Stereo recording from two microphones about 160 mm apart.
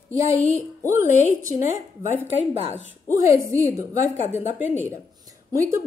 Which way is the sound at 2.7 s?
15° right (ahead or behind).